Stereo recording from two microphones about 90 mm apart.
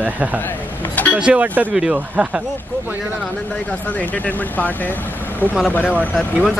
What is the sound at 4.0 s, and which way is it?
Speech, 20° left (ahead or behind).